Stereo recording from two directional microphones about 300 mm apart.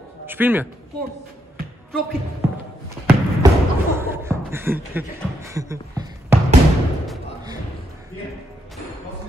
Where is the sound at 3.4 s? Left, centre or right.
Centre.